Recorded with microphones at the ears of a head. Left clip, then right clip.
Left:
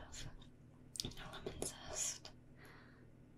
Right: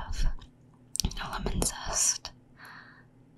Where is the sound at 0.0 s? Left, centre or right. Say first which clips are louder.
Right 12 dB; right.